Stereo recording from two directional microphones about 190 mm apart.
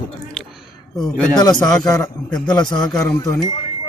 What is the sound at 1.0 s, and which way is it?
Speech, 20° left (ahead or behind).